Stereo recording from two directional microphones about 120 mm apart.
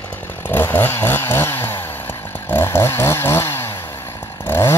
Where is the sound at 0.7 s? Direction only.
20° left (ahead or behind).